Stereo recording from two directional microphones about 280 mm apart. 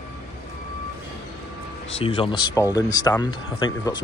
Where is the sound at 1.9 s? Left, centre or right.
Centre.